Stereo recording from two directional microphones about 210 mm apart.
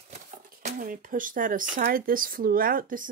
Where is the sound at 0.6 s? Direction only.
40° right (ahead or behind).